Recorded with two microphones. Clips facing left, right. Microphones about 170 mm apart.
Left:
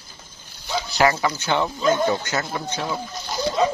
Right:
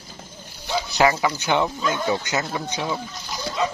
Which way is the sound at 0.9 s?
15° right (ahead or behind).